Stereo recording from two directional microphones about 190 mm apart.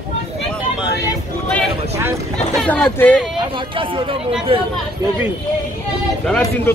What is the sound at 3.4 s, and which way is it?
Speech, 25° right (ahead or behind).